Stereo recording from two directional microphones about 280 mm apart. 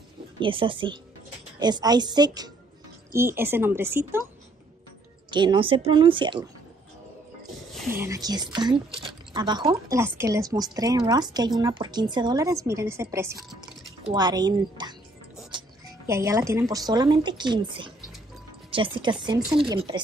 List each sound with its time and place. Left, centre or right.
0.4 s speech: centre
5.3 s speech: centre
8.0 s speech: centre
15.5 s music: centre
16.1 s speech: centre